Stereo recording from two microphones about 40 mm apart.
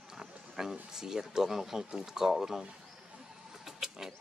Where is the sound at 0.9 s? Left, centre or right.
Centre.